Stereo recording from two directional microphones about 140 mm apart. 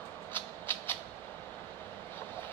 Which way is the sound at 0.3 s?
15° left (ahead or behind).